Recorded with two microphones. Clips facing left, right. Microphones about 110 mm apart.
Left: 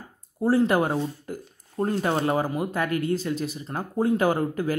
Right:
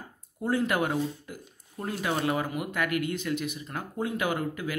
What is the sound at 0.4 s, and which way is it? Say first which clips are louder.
Speech: left 6 dB; 30° left (ahead or behind).